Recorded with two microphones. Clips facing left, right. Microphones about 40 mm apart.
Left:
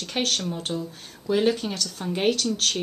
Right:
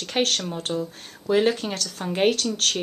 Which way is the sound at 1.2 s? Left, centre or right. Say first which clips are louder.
Right 2 dB; centre.